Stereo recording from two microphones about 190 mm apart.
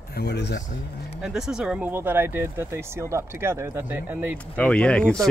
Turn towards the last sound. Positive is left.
turn(degrees=5)  # may be behind; listen again after turning